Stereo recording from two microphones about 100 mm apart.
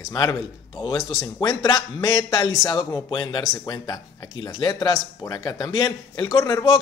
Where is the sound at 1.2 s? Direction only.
35° left (ahead or behind).